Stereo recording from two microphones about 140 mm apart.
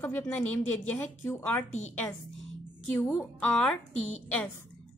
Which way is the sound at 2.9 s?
10° left (ahead or behind).